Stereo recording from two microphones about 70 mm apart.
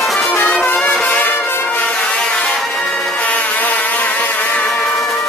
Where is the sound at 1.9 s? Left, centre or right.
Centre.